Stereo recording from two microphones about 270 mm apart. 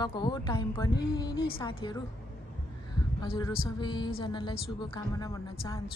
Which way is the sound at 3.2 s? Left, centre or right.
Centre.